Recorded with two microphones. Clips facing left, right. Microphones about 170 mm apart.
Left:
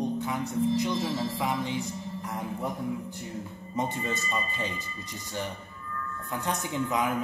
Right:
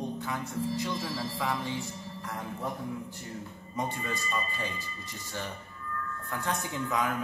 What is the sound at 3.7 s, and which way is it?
Speech, 20° left (ahead or behind).